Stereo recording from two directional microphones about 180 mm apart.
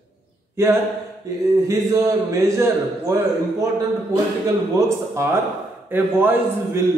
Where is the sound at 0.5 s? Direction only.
15° right (ahead or behind).